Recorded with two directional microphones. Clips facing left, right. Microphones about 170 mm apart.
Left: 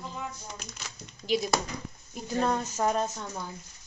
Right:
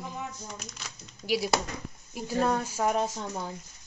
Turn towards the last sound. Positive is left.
turn(degrees=-15)  # may be behind; listen again after turning